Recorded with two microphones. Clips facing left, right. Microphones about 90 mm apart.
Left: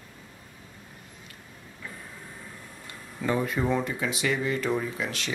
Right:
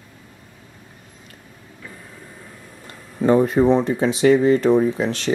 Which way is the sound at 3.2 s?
35° right (ahead or behind).